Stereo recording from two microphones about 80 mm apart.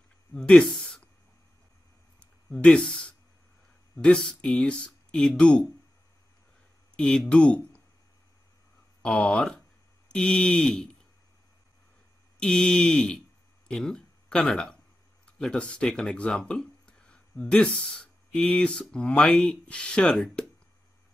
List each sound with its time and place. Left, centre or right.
0.3 s speech: centre
2.1 s a sound: centre
3.9 s speech: centre
7.0 s speech: centre
9.0 s speech: centre
12.4 s speech: centre